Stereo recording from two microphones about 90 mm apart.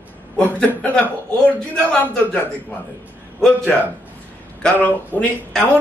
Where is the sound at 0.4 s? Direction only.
15° left (ahead or behind).